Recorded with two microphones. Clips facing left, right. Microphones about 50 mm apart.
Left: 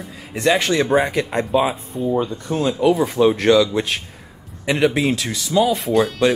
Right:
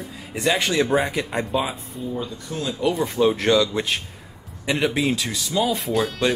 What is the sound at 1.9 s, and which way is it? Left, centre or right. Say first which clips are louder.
Speech: left 10 dB; left.